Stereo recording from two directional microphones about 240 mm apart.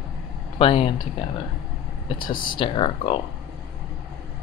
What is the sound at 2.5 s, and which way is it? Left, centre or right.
Speech, left.